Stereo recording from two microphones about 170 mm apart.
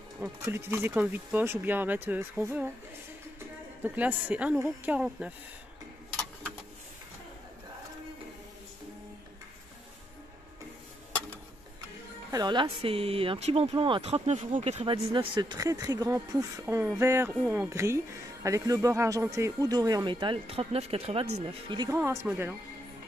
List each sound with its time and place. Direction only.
0.2 s a woman's voice: 15° right (ahead or behind)
12.3 s speech: 25° right (ahead or behind)
21.9 s speech: 15° right (ahead or behind)